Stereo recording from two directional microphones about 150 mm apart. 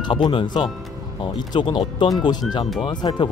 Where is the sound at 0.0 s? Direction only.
35° left (ahead or behind).